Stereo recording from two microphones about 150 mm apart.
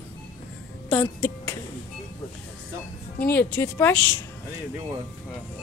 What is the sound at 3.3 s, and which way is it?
Speech, 15° left (ahead or behind).